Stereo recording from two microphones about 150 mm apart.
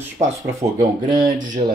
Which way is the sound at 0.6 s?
45° right (ahead or behind).